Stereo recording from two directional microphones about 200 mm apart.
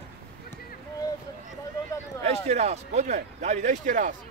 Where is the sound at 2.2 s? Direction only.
35° right (ahead or behind).